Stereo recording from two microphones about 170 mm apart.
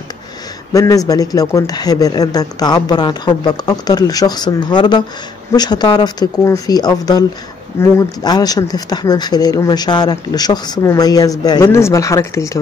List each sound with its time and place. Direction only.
0.7 s speech: 20° left (ahead or behind)